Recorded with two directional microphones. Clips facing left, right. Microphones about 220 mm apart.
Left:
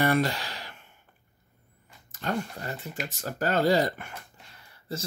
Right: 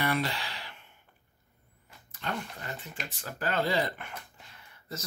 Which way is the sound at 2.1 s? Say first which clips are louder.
Left 6 dB; 40° left (ahead or behind).